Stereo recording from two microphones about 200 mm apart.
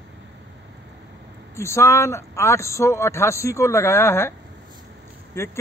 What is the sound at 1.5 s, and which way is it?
Speech, 15° left (ahead or behind).